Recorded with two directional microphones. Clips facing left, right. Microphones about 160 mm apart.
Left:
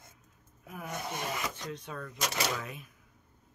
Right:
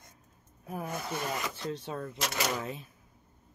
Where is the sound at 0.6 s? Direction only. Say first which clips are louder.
Right 5 dB; 35° right (ahead or behind).